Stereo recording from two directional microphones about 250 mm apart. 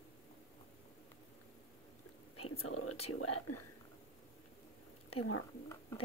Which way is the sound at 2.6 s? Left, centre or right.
Left.